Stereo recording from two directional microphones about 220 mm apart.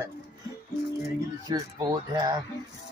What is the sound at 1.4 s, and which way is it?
Speech, 20° right (ahead or behind).